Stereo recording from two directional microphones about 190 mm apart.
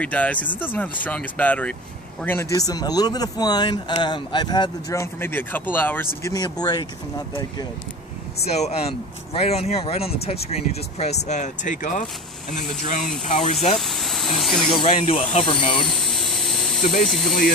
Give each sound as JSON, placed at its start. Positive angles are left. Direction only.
{"t": 0.0, "sound": "speech", "side_deg": 5}
{"t": 8.5, "sound": "speech", "side_deg": 35}
{"t": 13.7, "sound": "speech", "side_deg": 0}
{"t": 14.7, "sound": "speech", "side_deg": 30}
{"t": 15.9, "sound": "a sound", "side_deg": 0}